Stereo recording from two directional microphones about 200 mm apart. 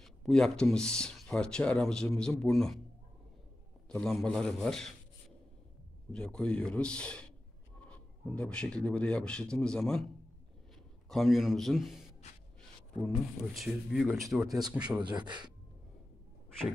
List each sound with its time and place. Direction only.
0.0 s speech: centre (ahead or behind)
3.9 s speech: centre (ahead or behind)
6.1 s speech: 5° left (ahead or behind)
11.1 s speech: centre (ahead or behind)
13.6 s speech: centre (ahead or behind)
15.0 s a man's voice: 20° right (ahead or behind)